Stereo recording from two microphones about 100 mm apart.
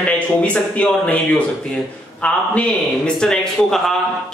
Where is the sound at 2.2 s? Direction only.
15° left (ahead or behind).